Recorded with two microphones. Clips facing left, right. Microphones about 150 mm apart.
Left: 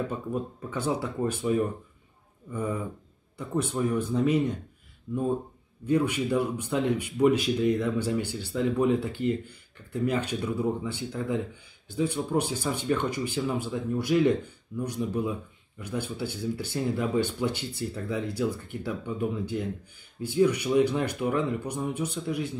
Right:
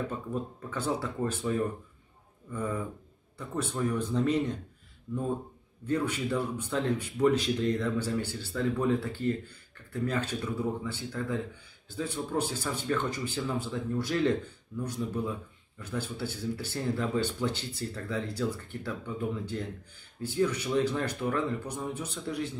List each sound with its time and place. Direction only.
0.1 s speech: 15° left (ahead or behind)